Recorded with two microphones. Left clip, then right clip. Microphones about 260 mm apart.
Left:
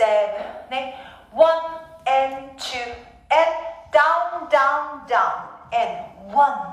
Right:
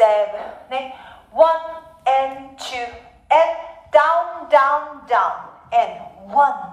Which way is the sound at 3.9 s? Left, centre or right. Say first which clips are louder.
Right 2 dB; right.